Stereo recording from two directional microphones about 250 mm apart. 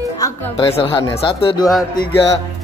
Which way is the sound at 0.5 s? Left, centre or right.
Left.